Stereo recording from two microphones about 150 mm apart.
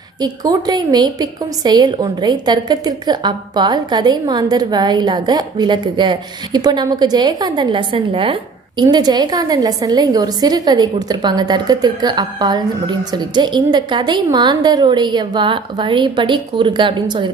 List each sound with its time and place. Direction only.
0.2 s a woman's voice: 25° right (ahead or behind)